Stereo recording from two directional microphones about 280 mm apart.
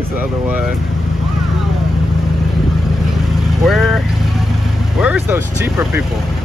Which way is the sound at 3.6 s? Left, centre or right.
Centre.